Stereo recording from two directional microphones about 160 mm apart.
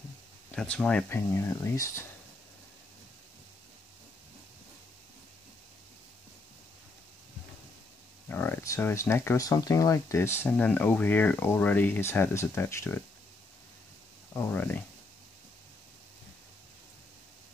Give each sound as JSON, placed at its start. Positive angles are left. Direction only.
{"t": 0.6, "sound": "speech", "side_deg": 5}
{"t": 8.3, "sound": "speech", "side_deg": 15}
{"t": 14.3, "sound": "speech", "side_deg": 15}